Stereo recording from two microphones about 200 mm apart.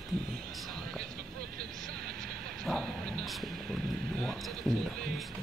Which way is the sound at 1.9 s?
50° right (ahead or behind).